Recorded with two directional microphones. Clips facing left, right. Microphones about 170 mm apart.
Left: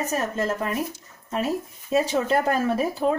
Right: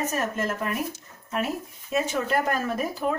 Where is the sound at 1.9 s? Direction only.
30° left (ahead or behind).